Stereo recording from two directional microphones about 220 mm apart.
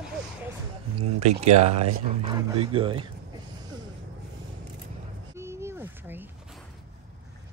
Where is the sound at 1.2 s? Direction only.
30° right (ahead or behind).